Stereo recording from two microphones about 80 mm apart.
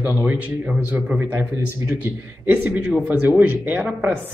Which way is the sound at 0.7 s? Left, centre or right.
Centre.